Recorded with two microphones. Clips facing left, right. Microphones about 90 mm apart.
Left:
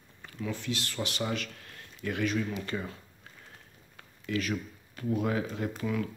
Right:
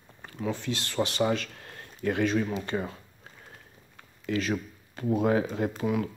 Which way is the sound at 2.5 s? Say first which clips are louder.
Right 4 dB; 35° right (ahead or behind).